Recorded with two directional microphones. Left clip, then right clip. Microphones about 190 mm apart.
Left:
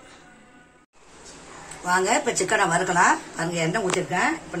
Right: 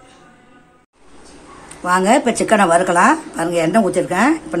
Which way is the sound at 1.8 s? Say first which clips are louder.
Right 8 dB; 60° right (ahead or behind).